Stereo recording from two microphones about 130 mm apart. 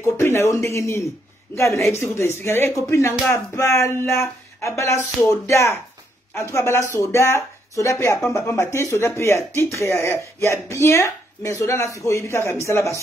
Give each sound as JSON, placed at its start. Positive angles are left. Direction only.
{"t": 0.0, "sound": "speech", "side_deg": 20}